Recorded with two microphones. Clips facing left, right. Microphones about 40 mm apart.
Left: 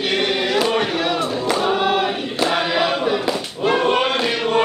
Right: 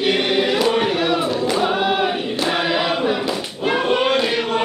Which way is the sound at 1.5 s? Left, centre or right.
Centre.